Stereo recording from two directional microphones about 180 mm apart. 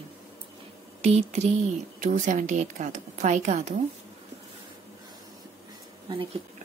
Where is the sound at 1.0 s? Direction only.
35° right (ahead or behind).